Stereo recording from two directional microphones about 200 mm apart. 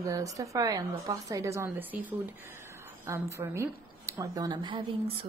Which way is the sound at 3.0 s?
15° right (ahead or behind).